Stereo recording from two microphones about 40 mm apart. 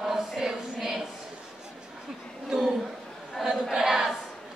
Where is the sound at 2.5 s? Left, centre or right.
Centre.